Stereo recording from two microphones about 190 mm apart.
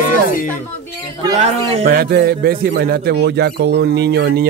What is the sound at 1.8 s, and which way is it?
Speech, 55° right (ahead or behind).